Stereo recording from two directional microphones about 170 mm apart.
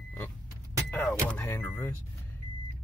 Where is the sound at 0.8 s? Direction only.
10° left (ahead or behind).